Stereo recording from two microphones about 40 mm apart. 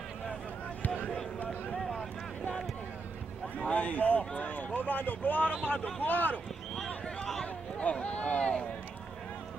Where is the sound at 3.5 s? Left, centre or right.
Left.